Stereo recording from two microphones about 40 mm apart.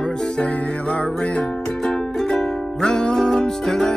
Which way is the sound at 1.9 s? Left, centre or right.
Centre.